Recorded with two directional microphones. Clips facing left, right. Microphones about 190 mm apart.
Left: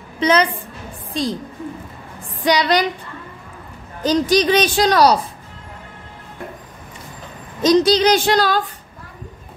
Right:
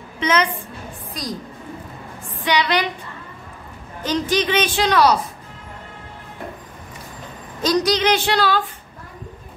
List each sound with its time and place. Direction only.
0.2 s a woman's voice: 35° left (ahead or behind)
2.4 s a woman's voice: 40° left (ahead or behind)
4.0 s a woman's voice: 35° left (ahead or behind)
7.6 s a woman's voice: 20° left (ahead or behind)
7.9 s a woman's voice: 40° left (ahead or behind)